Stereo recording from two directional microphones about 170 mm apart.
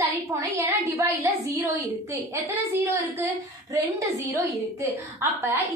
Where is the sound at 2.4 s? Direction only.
15° right (ahead or behind).